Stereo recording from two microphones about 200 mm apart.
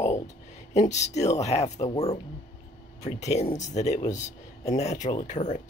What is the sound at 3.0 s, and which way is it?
Speech, 35° left (ahead or behind).